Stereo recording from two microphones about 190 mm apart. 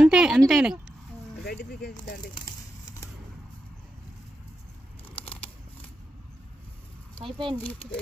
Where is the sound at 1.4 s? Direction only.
60° left (ahead or behind).